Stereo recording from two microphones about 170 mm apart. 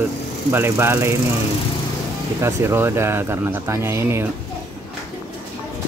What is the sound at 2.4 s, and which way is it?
Speech, 15° right (ahead or behind).